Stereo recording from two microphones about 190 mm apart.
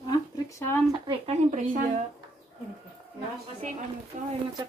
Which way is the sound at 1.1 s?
40° right (ahead or behind).